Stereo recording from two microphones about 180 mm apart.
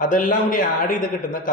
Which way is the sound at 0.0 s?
45° left (ahead or behind).